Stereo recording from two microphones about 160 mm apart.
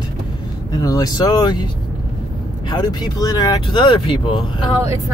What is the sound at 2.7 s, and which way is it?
Speech, 25° left (ahead or behind).